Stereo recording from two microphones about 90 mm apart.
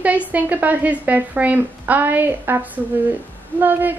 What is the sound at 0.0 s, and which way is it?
Speech, 15° right (ahead or behind).